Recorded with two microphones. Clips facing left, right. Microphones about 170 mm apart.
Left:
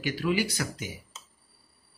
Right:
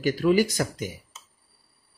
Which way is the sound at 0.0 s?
45° right (ahead or behind).